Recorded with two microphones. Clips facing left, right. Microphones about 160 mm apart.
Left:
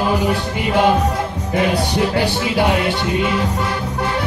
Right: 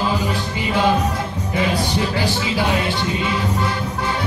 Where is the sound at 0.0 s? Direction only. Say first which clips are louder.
Left 4 dB; 60° left (ahead or behind).